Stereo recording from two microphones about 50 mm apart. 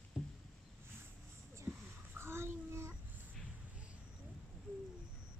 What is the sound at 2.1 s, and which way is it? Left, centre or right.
Child singing, right.